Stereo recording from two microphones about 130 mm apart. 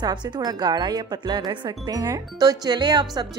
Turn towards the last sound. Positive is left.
turn(degrees=-30)  # may be behind; listen again after turning